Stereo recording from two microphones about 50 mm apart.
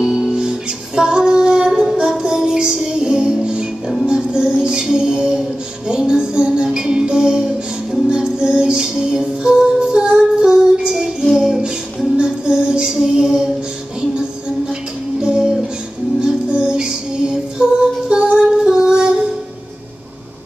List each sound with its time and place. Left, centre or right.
0.0 s music: centre
14.7 s music: centre